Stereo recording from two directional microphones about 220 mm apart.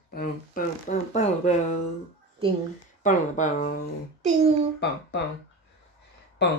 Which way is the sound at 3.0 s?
35° left (ahead or behind).